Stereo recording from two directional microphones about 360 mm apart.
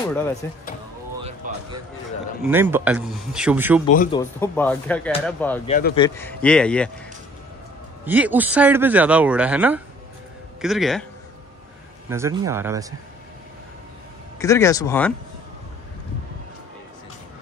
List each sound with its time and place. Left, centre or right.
0.4 s speech: centre
2.4 s speech: centre
3.8 s speech: centre
4.2 s speech: centre
5.7 s speech: left
5.9 s speech: centre
8.0 s speech: centre
12.1 s a man's voice: centre
14.4 s speech: centre